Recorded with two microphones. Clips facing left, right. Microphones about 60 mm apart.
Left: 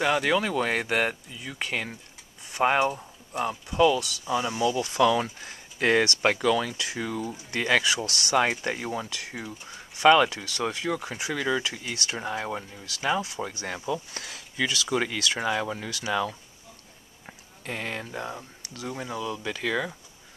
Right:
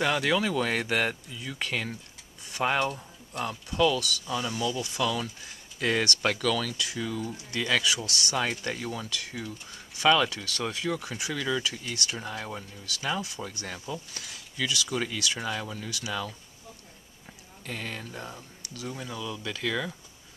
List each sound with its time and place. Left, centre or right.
0.0 s speech: centre
4.6 s speech: left; by 11.4 s centre
11.4 s speech: left
13.8 s speech: left
14.2 s speech: left; by 20.0 s centre